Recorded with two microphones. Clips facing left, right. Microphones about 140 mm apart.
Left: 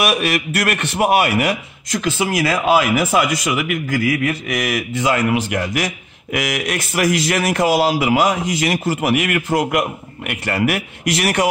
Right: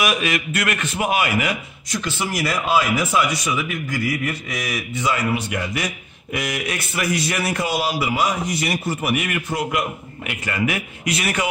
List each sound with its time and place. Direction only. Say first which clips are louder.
0.0 s a man's voice: left 3 dB; 65° left (ahead or behind)